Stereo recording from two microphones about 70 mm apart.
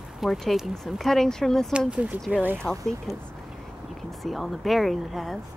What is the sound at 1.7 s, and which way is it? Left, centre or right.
Speech, centre.